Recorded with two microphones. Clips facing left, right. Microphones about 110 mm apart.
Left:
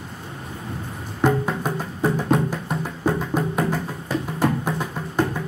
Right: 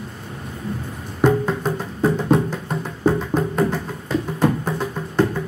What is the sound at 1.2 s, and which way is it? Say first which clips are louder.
Music: right 3 dB; 10° left (ahead or behind).